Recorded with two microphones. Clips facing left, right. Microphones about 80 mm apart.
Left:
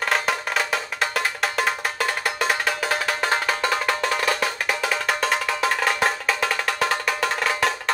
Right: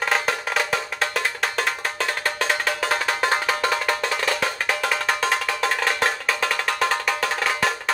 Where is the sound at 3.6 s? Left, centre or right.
Centre.